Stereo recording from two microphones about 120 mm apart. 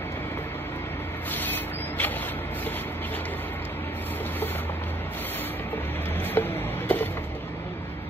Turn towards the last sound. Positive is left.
turn(degrees=15)  # may be behind; listen again after turning